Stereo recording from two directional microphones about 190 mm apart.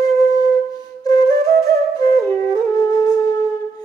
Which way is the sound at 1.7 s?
15° left (ahead or behind).